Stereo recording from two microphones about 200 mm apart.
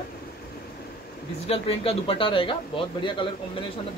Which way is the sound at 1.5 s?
30° left (ahead or behind).